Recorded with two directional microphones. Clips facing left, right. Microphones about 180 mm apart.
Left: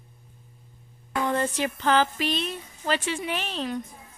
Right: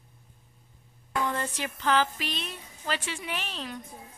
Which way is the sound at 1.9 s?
30° left (ahead or behind).